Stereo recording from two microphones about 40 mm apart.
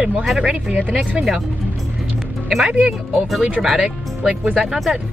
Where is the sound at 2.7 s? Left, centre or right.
Right.